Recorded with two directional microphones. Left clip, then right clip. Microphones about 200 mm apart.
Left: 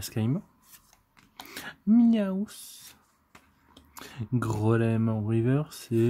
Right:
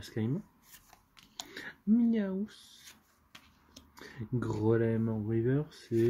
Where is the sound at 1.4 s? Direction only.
60° left (ahead or behind).